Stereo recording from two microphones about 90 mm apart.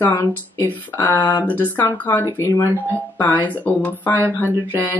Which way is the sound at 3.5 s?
20° left (ahead or behind).